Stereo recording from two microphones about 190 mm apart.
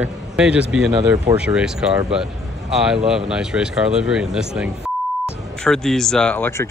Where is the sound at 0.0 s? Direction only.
5° right (ahead or behind).